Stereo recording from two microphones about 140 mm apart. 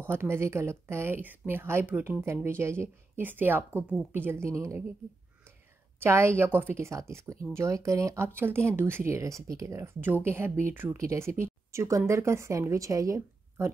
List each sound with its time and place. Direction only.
0.0 s a woman's voice: 15° right (ahead or behind)
5.9 s a woman's voice: 20° right (ahead or behind)